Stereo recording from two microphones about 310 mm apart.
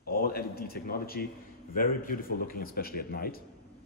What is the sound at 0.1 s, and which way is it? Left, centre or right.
A man's voice, left.